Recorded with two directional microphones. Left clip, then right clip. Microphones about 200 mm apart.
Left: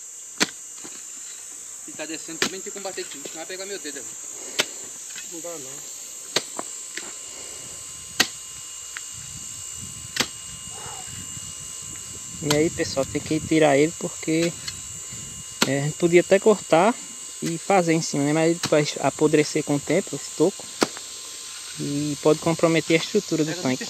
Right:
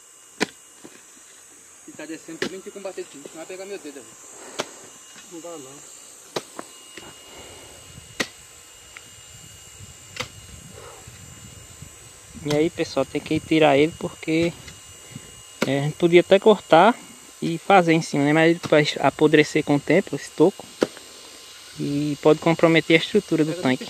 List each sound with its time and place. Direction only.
0.4 s chop: 5° right (ahead or behind)
2.0 s cricket: 25° right (ahead or behind)
2.5 s speech: 35° right (ahead or behind)
10.2 s a sound: centre (ahead or behind)
12.4 s speech: 5° right (ahead or behind); by 20.6 s 25° right (ahead or behind)
21.9 s speech: 15° right (ahead or behind)